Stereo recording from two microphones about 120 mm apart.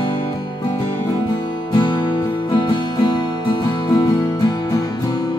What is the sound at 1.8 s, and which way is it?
Music, 40° left (ahead or behind).